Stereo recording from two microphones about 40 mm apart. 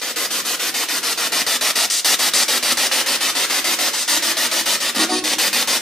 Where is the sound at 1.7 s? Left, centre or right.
Centre.